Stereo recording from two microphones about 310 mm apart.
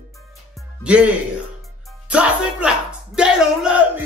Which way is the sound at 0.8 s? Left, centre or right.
Centre.